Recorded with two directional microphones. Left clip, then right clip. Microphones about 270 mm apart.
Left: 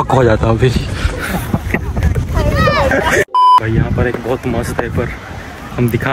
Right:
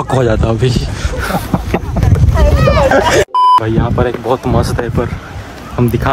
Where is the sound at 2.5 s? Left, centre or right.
Left.